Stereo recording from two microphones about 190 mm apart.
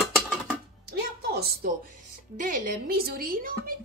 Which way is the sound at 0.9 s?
55° right (ahead or behind).